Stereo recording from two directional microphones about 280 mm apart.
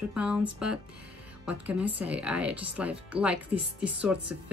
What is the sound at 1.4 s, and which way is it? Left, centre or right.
A woman's voice, centre.